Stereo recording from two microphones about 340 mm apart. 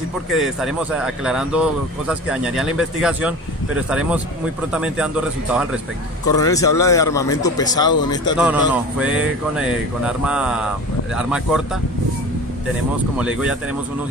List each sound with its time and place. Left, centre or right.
0.3 s speech: centre
6.3 s speech: centre
8.4 s speech: centre
13.2 s speech: centre